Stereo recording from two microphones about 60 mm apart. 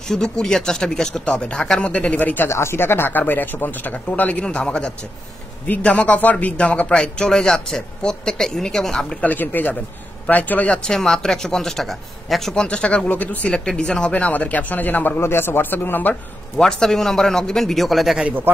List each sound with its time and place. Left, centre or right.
0.1 s speech: centre; by 2.4 s left
2.4 s speech: left; by 9.2 s centre
9.2 s speech: left
10.8 s speech: centre
12.6 s speech: centre
13.5 s speech: centre; by 16.2 s left
16.5 s speech: centre